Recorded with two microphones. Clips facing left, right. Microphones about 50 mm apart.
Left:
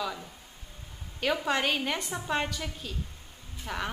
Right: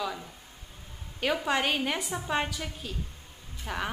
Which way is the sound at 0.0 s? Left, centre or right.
Centre.